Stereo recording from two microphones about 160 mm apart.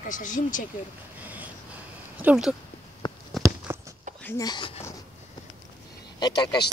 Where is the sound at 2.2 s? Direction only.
5° right (ahead or behind).